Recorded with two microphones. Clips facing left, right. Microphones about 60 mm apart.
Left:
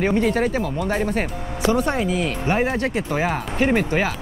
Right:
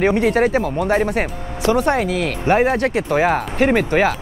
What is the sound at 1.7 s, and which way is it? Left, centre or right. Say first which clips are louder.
Speech: right 4 dB; right.